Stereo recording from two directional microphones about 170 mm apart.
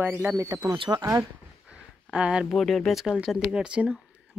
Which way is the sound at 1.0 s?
15° right (ahead or behind).